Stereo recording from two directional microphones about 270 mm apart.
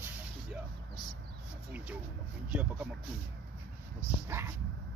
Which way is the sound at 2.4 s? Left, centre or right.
Centre.